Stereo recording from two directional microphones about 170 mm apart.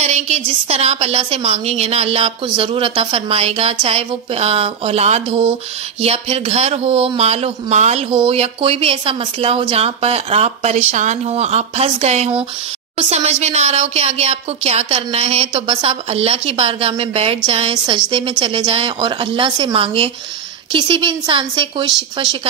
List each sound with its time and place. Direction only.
0.0 s a woman's voice: 40° right (ahead or behind)